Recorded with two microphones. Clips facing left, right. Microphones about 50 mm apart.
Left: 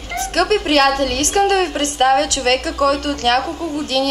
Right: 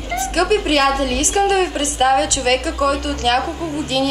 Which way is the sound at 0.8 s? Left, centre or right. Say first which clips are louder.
Left 1 dB; right.